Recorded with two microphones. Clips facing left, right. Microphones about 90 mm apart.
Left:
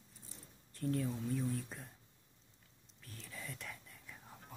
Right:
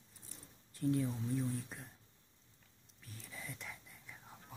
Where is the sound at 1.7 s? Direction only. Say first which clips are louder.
Left 1 dB; 5° right (ahead or behind).